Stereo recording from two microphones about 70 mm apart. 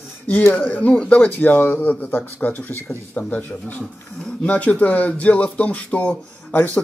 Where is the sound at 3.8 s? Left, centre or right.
Centre.